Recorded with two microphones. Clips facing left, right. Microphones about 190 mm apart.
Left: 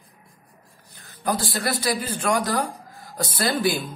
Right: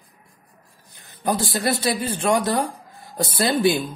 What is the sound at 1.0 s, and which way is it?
A man's voice, 20° right (ahead or behind).